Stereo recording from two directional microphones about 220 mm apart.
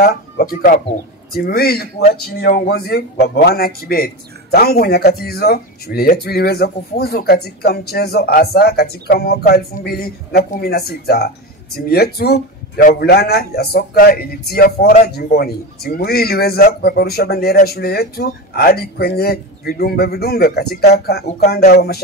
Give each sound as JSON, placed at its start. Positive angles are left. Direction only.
{"t": 0.0, "sound": "speech", "side_deg": 45}